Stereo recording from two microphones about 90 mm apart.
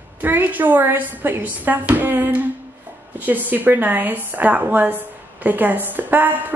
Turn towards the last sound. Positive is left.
turn(degrees=-20)  # may be behind; listen again after turning